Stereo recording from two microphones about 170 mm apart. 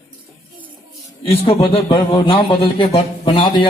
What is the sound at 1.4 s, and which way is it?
A man's voice, 35° left (ahead or behind).